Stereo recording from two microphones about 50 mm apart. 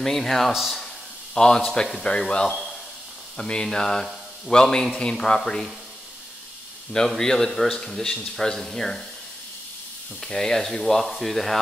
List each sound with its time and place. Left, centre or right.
0.0 s speech: centre
0.5 s speech: centre
1.3 s speech: centre
7.1 s speech: centre
10.2 s speech: centre